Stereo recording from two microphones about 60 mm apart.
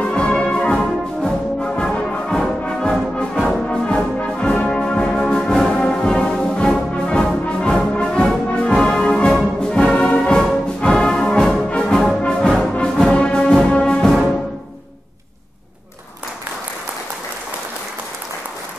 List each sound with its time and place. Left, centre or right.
0.0 s music: centre